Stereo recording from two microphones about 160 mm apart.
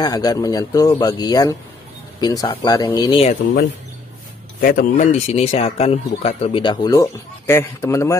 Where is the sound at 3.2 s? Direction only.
40° left (ahead or behind).